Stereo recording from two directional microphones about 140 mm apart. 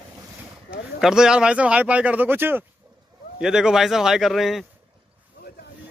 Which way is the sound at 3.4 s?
5° right (ahead or behind).